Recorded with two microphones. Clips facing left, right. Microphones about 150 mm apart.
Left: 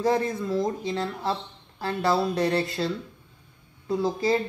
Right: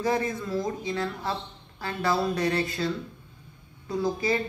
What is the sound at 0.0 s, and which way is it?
Speech, 30° left (ahead or behind).